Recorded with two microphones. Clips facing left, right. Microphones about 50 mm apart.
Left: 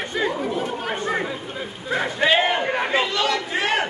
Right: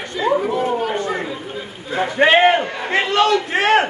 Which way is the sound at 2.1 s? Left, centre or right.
Right.